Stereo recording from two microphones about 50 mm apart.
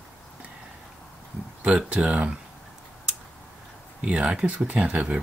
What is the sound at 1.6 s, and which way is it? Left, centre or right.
Speech, right.